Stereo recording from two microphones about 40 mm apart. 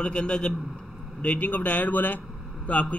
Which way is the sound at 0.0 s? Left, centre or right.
Left.